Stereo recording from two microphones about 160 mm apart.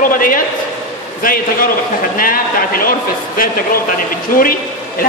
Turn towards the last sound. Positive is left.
turn(degrees=60)  # may be behind; listen again after turning